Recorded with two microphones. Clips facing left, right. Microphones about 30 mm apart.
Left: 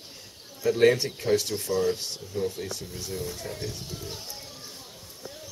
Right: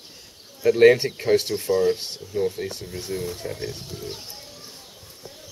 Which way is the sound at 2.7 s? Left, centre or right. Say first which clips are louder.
Right 4 dB; right.